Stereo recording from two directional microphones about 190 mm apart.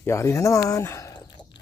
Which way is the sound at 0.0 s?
15° left (ahead or behind).